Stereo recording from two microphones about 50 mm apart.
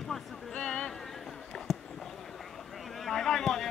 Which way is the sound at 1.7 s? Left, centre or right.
Centre.